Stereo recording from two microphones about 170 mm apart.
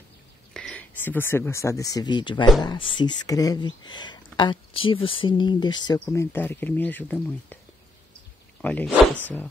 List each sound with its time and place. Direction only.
0.5 s speech: 5° left (ahead or behind); by 5.9 s 25° left (ahead or behind)
5.9 s speech: 15° left (ahead or behind)
8.5 s speech: 5° left (ahead or behind)